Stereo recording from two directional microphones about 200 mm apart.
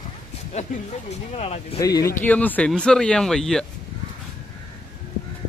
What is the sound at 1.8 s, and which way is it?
Speech, 20° left (ahead or behind).